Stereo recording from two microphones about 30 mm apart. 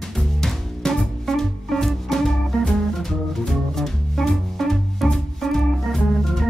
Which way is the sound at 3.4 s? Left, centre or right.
Centre.